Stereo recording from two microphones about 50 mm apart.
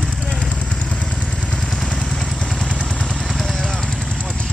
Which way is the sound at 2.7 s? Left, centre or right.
Centre.